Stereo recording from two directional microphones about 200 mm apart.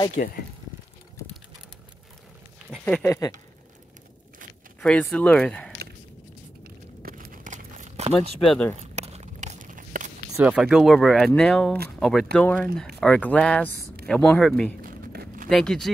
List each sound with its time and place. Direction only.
0.2 s speech: 40° left (ahead or behind)
2.7 s speech: 5° left (ahead or behind)
4.7 s speech: 5° left (ahead or behind)
6.6 s a sound: 45° right (ahead or behind)
8.5 s speech: 5° left (ahead or behind)
8.9 s a sound: 35° right (ahead or behind)
10.3 s speech: 5° right (ahead or behind)
14.8 s a sound: 45° right (ahead or behind)
15.5 s speech: centre (ahead or behind)